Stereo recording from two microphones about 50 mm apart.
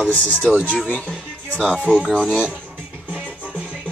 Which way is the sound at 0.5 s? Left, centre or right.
Left.